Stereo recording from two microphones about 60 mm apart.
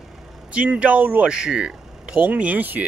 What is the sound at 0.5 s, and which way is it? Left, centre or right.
Speech, right.